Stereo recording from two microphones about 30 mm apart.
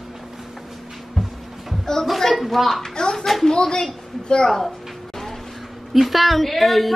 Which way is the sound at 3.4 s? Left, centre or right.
Left.